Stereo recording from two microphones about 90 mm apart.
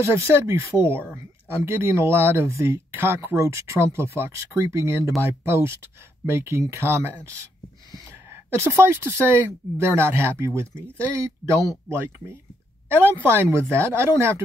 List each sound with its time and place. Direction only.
0.1 s speech: 30° right (ahead or behind)
8.5 s speech: 25° right (ahead or behind)
12.8 s speech: 25° right (ahead or behind)